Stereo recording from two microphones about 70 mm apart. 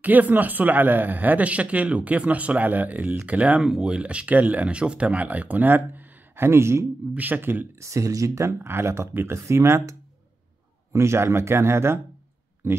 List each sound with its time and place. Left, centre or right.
0.0 s speech: right
7.2 s speech: right
7.8 s speech: right
8.6 s speech: right